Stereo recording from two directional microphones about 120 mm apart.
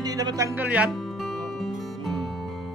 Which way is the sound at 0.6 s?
15° right (ahead or behind).